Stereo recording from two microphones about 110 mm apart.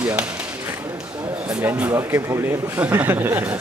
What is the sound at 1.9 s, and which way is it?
Speech, 20° right (ahead or behind).